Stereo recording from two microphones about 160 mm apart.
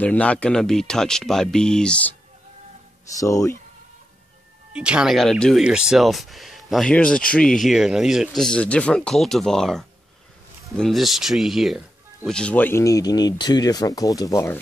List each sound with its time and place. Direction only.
0.0 s speech: 10° left (ahead or behind)
3.2 s speech: 20° left (ahead or behind)
4.7 s speech: 5° right (ahead or behind); by 14.6 s 15° left (ahead or behind)